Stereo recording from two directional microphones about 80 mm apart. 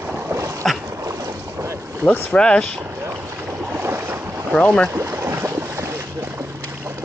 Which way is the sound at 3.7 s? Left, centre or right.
Right.